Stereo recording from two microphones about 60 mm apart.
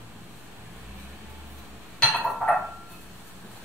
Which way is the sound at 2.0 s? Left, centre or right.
Centre.